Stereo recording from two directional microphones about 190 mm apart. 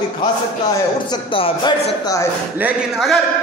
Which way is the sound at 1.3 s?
25° left (ahead or behind).